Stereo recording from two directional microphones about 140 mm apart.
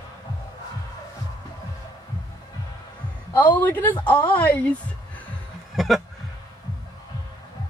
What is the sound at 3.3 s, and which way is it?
Speech, 15° left (ahead or behind).